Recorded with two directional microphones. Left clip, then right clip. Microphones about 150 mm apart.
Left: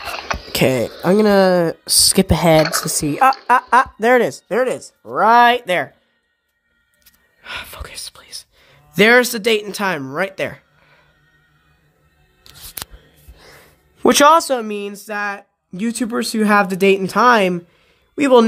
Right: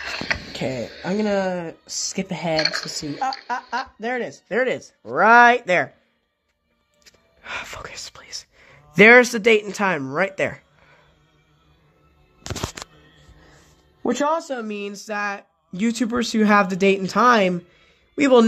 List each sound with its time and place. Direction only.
0.0 s a sound: 10° right (ahead or behind)
0.5 s speech: 65° left (ahead or behind)
3.2 s speech: 65° left (ahead or behind)
4.5 s speech: 15° left (ahead or behind)
5.0 s speech: centre (ahead or behind)
7.4 s speech: centre (ahead or behind)
14.0 s speech: 55° left (ahead or behind)
14.7 s speech: 10° left (ahead or behind)